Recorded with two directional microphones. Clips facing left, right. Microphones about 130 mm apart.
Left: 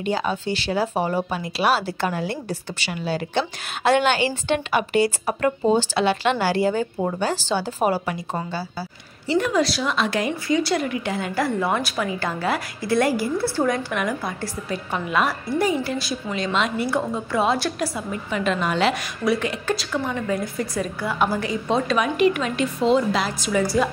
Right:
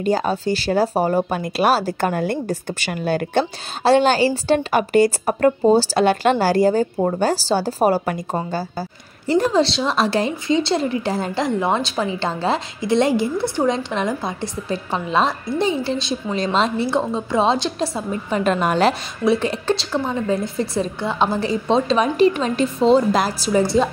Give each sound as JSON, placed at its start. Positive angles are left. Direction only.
{"t": 0.0, "sound": "speech", "side_deg": -40}
{"t": 3.8, "sound": "a woman's voice", "side_deg": -35}
{"t": 9.3, "sound": "a woman's voice", "side_deg": -30}
{"t": 11.3, "sound": "a woman's voice", "side_deg": -20}
{"t": 19.2, "sound": "a woman's voice", "side_deg": -25}